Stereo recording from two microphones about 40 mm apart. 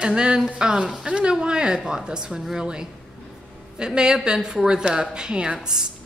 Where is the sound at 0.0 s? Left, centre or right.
Right.